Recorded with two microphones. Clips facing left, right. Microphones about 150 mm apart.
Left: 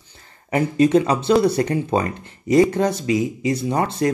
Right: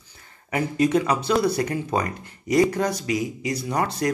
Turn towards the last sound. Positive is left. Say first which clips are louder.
# left 4 dB
turn(degrees=25)  # may be behind; listen again after turning